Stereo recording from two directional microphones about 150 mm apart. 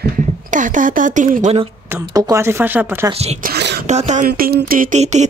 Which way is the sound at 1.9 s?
20° right (ahead or behind).